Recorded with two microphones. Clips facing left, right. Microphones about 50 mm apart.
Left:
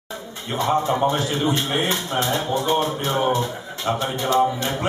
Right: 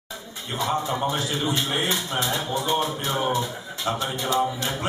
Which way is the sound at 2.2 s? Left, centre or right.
Centre.